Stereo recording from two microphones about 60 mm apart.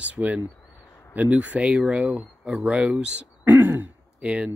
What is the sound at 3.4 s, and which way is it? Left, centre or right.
Throat clearing, right.